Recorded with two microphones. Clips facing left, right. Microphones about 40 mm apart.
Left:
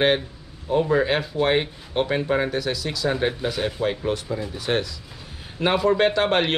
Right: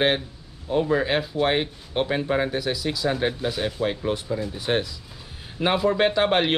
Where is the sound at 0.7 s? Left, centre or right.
Centre.